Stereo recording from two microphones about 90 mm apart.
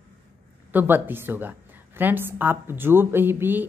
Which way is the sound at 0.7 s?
20° right (ahead or behind).